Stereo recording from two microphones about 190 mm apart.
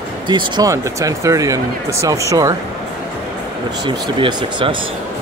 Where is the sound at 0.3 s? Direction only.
25° right (ahead or behind).